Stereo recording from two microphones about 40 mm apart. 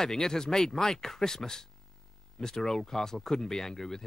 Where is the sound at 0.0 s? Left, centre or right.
Centre.